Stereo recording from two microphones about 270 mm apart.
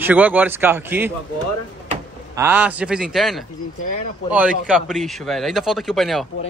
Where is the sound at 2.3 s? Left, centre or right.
Centre.